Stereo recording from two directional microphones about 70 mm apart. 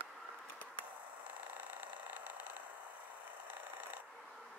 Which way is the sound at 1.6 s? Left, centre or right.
Right.